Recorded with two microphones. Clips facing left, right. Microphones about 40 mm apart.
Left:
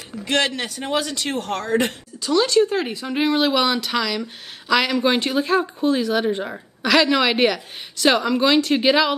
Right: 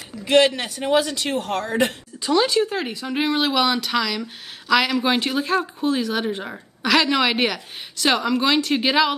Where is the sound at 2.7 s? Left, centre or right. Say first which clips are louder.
Left 2 dB; centre.